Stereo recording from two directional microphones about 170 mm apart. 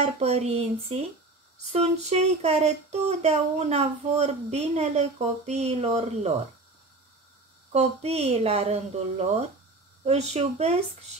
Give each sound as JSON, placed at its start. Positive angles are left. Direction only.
{"t": 0.0, "sound": "speech", "side_deg": -40}
{"t": 7.7, "sound": "speech", "side_deg": -40}